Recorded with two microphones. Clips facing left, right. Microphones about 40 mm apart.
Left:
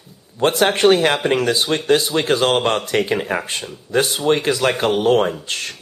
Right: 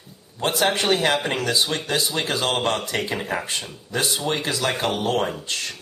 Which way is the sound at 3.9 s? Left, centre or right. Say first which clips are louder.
Left 7 dB; left.